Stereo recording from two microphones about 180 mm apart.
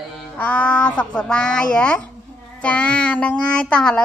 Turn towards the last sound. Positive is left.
turn(degrees=5)  # may be behind; listen again after turning